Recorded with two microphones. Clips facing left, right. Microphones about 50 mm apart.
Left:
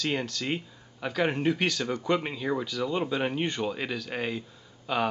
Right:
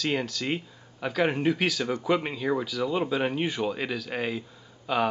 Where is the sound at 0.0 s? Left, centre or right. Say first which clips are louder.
Right 2 dB; centre.